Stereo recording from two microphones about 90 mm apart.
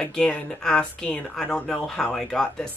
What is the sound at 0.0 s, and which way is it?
Speech, 10° left (ahead or behind).